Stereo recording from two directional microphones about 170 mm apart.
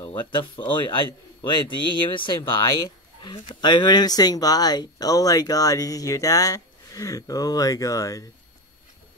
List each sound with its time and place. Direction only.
0.1 s speech: 30° left (ahead or behind)